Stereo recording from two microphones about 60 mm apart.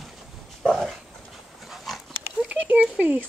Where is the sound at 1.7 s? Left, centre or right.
Centre.